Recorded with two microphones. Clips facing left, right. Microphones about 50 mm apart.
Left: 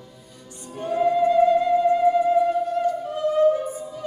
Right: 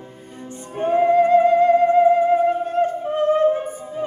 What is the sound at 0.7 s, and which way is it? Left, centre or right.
Music, right.